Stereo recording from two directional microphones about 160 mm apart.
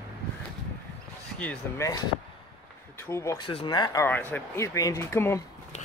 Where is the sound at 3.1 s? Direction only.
20° left (ahead or behind).